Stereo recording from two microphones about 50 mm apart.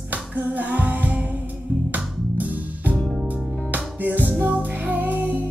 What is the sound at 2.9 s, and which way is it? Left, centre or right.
Music, centre.